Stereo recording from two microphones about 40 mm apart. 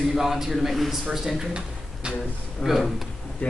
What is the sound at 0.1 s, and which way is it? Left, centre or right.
Speech, centre.